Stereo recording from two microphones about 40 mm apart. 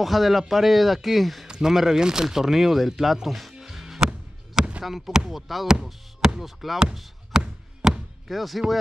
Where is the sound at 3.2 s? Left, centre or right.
Centre.